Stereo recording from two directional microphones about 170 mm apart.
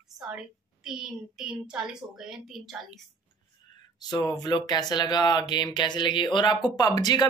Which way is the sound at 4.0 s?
25° left (ahead or behind).